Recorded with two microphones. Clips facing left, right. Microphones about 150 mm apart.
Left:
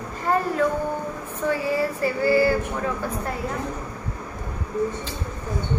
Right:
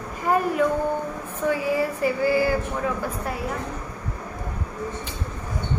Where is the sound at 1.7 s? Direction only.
15° right (ahead or behind).